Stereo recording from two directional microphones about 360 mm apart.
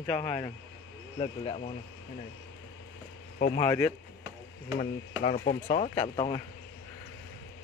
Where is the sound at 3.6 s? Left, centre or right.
Centre.